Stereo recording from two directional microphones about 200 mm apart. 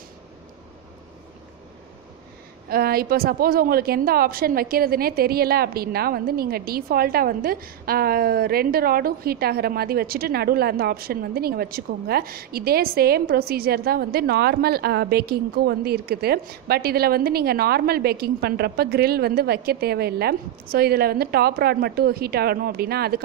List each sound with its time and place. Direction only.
2.7 s a woman's voice: 50° right (ahead or behind)